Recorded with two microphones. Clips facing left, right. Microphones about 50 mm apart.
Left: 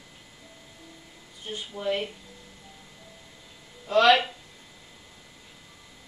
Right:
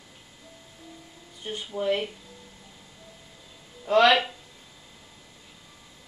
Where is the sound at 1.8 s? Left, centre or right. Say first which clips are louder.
Right 3 dB; right.